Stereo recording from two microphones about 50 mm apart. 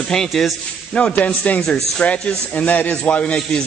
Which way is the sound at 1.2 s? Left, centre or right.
Left.